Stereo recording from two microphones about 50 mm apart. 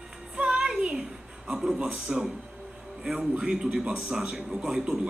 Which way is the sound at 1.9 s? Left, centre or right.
Right.